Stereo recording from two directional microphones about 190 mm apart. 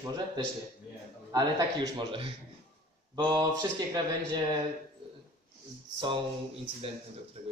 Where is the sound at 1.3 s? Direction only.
20° right (ahead or behind).